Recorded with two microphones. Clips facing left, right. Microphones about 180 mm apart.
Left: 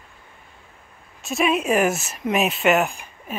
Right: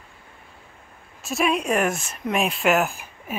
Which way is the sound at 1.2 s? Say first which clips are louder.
Left 2 dB; centre (ahead or behind).